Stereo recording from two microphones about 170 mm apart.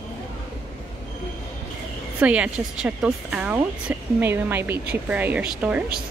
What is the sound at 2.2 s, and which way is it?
Speech, 5° right (ahead or behind).